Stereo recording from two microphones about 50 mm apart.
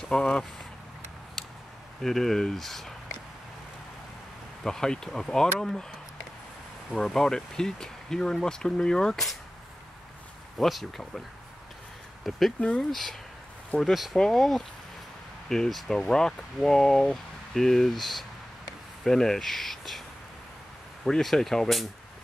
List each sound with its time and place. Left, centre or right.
0.1 s speech: centre
2.0 s speech: centre
4.6 s speech: centre
7.2 s speech: centre
10.6 s speech: centre
12.5 s speech: left
13.7 s speech: centre
21.0 s speech: centre